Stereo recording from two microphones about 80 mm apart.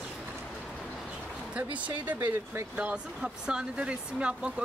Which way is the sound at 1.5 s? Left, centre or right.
Centre.